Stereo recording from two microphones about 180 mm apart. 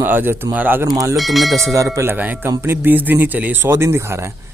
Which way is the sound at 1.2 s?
Centre (ahead or behind).